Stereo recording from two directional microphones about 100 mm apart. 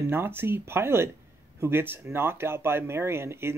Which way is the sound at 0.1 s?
20° right (ahead or behind).